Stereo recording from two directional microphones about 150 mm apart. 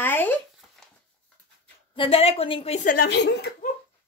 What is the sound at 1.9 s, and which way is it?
Speech, 40° left (ahead or behind).